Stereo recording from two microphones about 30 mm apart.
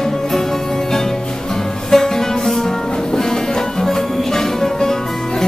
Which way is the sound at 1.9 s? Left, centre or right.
Centre.